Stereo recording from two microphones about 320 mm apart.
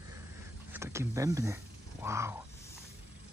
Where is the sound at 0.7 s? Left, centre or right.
Centre.